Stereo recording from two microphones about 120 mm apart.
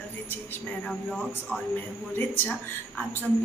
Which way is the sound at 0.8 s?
5° left (ahead or behind).